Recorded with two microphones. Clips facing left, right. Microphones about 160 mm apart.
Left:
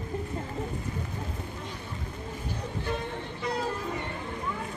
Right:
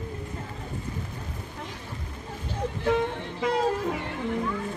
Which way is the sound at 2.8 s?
90° right.